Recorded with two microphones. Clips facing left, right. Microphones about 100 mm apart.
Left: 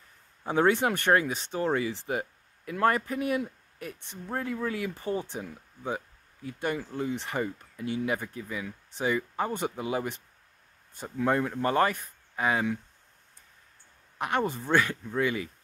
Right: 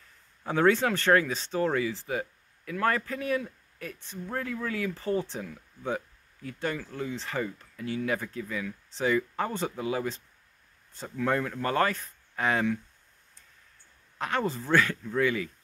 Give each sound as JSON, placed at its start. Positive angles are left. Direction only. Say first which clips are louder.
{"t": 0.4, "sound": "speech", "louder": "even", "side_deg": 15}
{"t": 14.1, "sound": "speech", "louder": "left 1 dB", "side_deg": 15}